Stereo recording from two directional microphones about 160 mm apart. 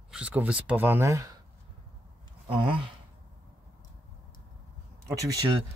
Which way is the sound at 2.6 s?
30° right (ahead or behind).